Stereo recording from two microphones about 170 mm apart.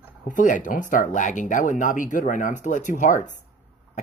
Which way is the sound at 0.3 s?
50° left (ahead or behind).